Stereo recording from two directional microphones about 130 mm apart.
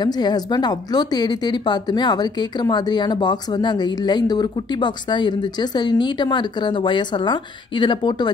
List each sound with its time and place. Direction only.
0.0 s a woman's voice: 30° left (ahead or behind)